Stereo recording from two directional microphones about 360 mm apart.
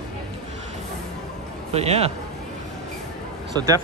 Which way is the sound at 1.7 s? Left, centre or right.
Centre.